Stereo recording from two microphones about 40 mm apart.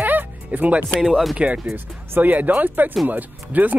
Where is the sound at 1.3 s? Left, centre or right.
Right.